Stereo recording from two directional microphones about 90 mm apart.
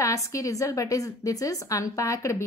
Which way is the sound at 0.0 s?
35° left (ahead or behind).